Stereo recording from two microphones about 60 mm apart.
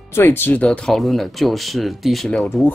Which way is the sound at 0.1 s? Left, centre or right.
Left.